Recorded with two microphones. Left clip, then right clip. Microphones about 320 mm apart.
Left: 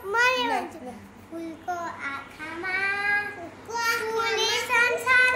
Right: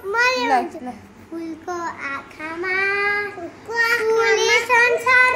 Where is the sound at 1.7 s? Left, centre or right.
Centre.